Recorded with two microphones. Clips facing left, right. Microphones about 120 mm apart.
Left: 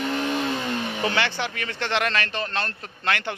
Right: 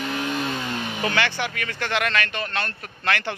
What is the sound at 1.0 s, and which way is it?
Speech, 20° left (ahead or behind).